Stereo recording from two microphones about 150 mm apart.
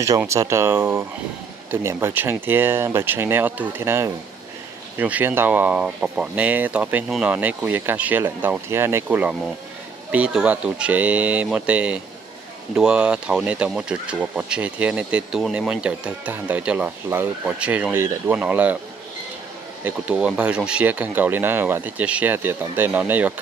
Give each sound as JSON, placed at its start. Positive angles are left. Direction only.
{"t": 0.2, "sound": "speech", "side_deg": -20}
{"t": 19.8, "sound": "speech", "side_deg": -10}